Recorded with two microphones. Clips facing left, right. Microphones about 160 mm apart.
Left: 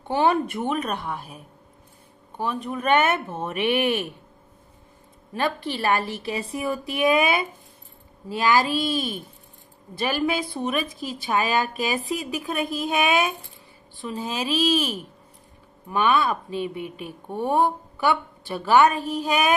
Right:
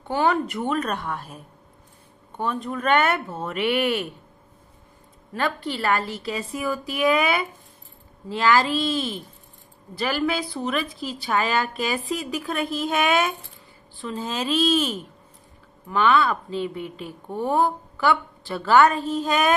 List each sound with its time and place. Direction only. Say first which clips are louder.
0.1 s speech: left 1 dB; 25° left (ahead or behind)
2.3 s speech: right 1 dB; 10° left (ahead or behind)
5.3 s a woman's voice: even; 20° left (ahead or behind)